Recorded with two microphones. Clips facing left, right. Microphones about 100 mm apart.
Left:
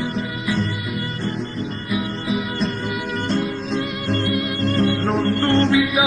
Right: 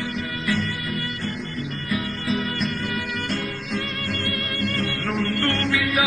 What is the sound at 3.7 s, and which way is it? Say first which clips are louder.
Music: left 5 dB; 25° left (ahead or behind).